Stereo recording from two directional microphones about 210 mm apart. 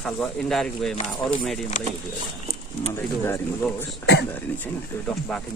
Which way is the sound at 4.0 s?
55° left (ahead or behind).